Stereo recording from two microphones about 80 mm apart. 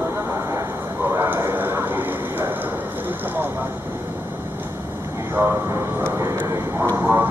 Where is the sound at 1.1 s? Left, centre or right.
Right.